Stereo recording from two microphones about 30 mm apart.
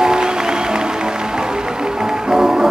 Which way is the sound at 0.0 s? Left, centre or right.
Right.